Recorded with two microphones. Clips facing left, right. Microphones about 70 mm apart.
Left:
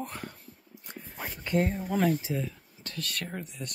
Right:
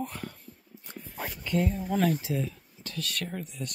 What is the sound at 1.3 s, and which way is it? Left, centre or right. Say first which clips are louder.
Speech: left 1 dB; left.